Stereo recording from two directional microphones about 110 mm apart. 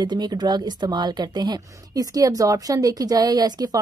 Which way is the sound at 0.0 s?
40° right (ahead or behind).